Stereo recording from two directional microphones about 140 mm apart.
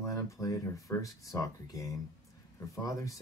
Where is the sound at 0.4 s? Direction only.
25° left (ahead or behind).